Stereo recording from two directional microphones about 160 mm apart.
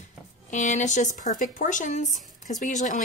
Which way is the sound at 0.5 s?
50° left (ahead or behind).